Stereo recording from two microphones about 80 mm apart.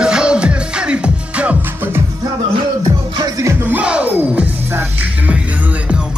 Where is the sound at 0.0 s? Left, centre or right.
Centre.